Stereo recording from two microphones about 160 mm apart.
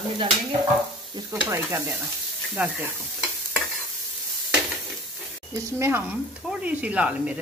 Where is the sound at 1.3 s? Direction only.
15° right (ahead or behind).